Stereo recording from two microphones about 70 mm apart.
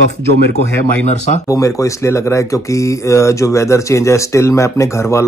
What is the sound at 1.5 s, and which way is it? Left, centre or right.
Speech, left.